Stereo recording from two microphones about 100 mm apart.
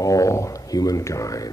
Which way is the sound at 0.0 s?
35° left (ahead or behind).